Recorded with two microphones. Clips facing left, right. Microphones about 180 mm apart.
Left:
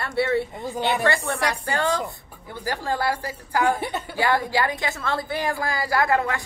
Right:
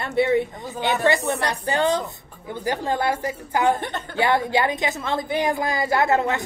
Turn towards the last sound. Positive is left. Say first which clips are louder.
# right 2 dB
turn(degrees=-25)  # may be behind; listen again after turning